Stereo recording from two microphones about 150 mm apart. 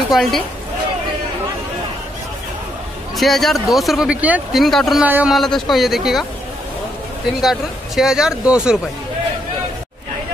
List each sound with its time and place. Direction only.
0.1 s speech: centre (ahead or behind)
3.2 s speech: centre (ahead or behind)
5.0 s speech: 10° right (ahead or behind)
5.3 s speech: centre (ahead or behind)
7.4 s speech: centre (ahead or behind)